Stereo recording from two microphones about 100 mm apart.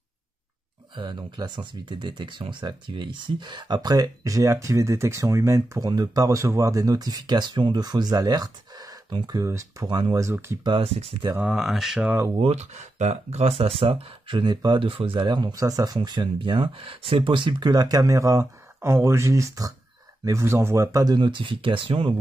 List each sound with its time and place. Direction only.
0.9 s speech: 50° right (ahead or behind)
9.5 s speech: 30° right (ahead or behind)
9.8 s speech: 45° right (ahead or behind)
10.8 s speech: 75° right (ahead or behind)
11.3 s speech: 10° right (ahead or behind)
12.4 s speech: 90° right; by 14.8 s 45° right (ahead or behind)
14.8 s speech: 65° right (ahead or behind)